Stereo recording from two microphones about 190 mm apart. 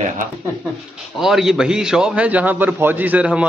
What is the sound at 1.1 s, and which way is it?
A man's voice, centre (ahead or behind).